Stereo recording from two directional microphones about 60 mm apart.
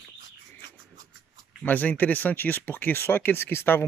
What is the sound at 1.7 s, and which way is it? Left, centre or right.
Speech, left.